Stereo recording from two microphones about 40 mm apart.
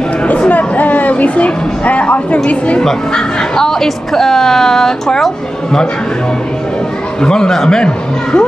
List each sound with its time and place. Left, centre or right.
0.5 s speech: left
3.1 s speech: centre
7.2 s speech: centre
7.8 s speech: left